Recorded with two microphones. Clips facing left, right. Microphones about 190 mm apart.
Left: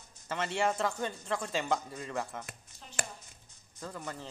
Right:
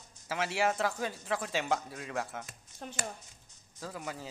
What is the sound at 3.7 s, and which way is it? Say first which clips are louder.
Speech: right 1 dB; 5° right (ahead or behind).